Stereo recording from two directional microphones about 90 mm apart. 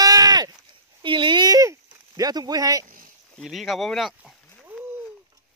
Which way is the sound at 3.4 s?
Centre (ahead or behind).